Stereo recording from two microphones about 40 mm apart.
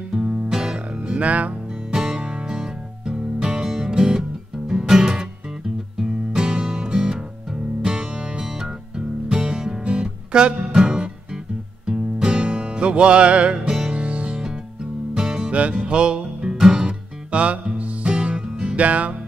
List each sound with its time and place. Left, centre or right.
0.1 s music: right
1.1 s speech: right
1.9 s music: centre
15.1 s music: centre
15.5 s music: right; by 16.8 s centre
16.8 s music: right
18.8 s music: right